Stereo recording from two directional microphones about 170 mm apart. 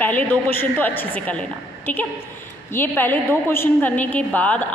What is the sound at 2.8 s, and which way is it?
A woman's voice, 10° left (ahead or behind).